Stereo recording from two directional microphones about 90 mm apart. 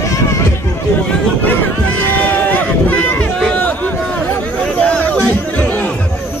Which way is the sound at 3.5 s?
20° left (ahead or behind).